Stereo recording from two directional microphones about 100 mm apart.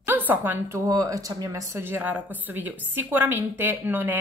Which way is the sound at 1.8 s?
20° right (ahead or behind).